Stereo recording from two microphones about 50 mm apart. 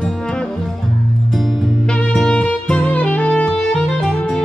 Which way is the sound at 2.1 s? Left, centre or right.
Centre.